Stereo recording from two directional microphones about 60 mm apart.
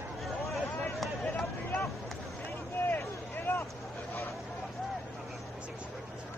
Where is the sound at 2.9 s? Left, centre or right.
Left.